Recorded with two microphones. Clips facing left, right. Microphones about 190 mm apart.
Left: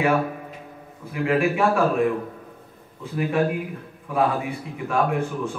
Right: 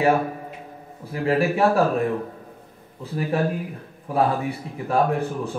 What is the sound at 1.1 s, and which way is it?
Speech, 35° right (ahead or behind).